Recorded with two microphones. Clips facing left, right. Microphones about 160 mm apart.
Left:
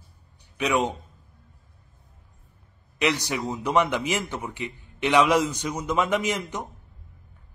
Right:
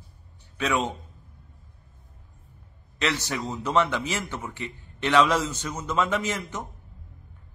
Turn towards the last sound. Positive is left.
turn(degrees=15)  # may be behind; listen again after turning